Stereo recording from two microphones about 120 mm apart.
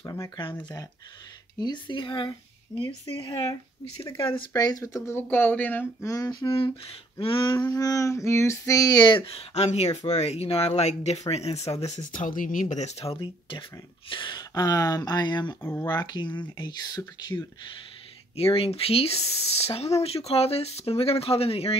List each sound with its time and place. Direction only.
0.0 s female singing: 25° left (ahead or behind)
0.4 s speech: 40° left (ahead or behind)
4.6 s female singing: 30° left (ahead or behind); by 5.9 s 15° left (ahead or behind)
6.0 s speech: 30° left (ahead or behind)
6.5 s speech: 45° left (ahead or behind)
7.6 s female singing: 30° left (ahead or behind)
9.1 s speech: 55° left (ahead or behind); by 15.5 s 35° left (ahead or behind)
15.6 s female singing: 20° left (ahead or behind)
15.9 s speech: 35° left (ahead or behind)
18.3 s speech: 55° left (ahead or behind)